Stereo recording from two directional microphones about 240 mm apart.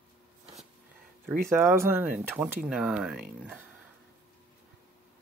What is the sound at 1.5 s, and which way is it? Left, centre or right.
Speech, centre.